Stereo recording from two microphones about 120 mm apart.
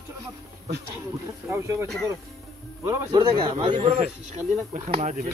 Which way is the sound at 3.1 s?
45° right (ahead or behind).